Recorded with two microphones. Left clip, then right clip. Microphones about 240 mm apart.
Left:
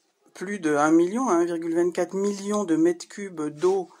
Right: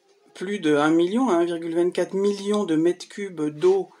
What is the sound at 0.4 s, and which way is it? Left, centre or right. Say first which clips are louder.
Speech: right 2 dB; left.